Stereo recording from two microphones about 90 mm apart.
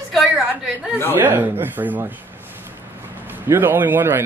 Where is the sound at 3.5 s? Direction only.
25° right (ahead or behind).